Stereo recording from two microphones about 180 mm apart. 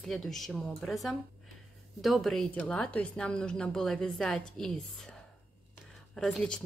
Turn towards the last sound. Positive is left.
turn(degrees=5)  # may be behind; listen again after turning